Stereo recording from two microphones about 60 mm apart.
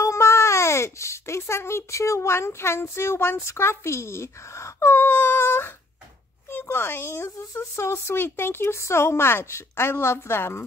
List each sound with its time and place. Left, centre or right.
0.0 s speech: left